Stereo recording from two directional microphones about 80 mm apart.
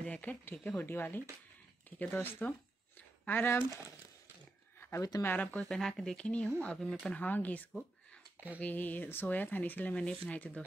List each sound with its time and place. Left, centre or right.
0.0 s speech: centre
4.7 s a sound: left
5.2 s speech: left
5.6 s speech: centre
7.2 s speech: left